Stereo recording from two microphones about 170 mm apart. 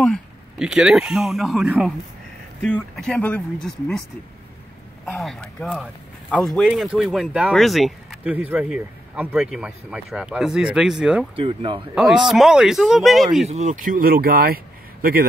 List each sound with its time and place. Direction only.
0.0 s speech: centre (ahead or behind)
2.6 s speech: 5° left (ahead or behind)
5.0 s speech: centre (ahead or behind)
11.3 s speech: 30° right (ahead or behind)
11.9 s speech: 5° right (ahead or behind)
13.5 s speech: 45° right (ahead or behind); by 15.2 s 60° right (ahead or behind)